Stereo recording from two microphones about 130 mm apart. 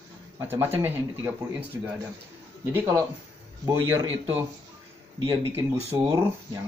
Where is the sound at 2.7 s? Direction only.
20° right (ahead or behind).